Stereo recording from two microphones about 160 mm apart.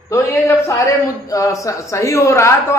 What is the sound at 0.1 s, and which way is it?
A woman's voice, 15° left (ahead or behind).